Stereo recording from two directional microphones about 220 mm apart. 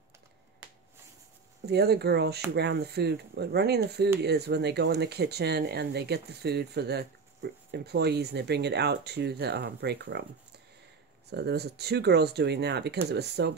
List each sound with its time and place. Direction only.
1.7 s speech: 45° right (ahead or behind)
11.2 s speech: 50° right (ahead or behind)